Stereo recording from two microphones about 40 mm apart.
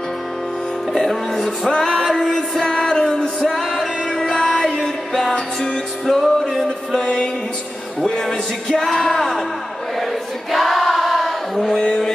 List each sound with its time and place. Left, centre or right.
0.9 s music: centre
3.4 s music: centre
4.1 s music: centre
8.0 s a man's voice: centre
8.8 s music: centre
10.5 s choir: centre